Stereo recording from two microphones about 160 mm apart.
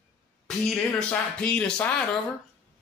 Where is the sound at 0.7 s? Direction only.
5° left (ahead or behind).